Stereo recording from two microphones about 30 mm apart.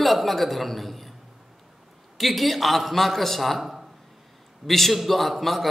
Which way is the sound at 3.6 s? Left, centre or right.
Centre.